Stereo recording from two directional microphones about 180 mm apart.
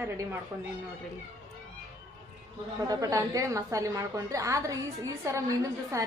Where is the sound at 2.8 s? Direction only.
20° right (ahead or behind).